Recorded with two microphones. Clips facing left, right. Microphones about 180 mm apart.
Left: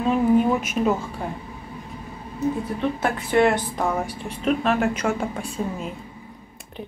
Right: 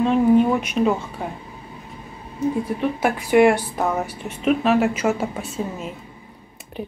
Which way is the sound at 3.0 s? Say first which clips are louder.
Right 5 dB; 10° right (ahead or behind).